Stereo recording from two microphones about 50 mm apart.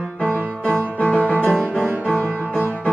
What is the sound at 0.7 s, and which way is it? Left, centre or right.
Music, left.